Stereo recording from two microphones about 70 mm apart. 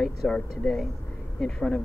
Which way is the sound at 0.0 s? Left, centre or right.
Centre.